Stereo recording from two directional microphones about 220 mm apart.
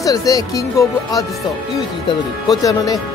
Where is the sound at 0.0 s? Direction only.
15° left (ahead or behind).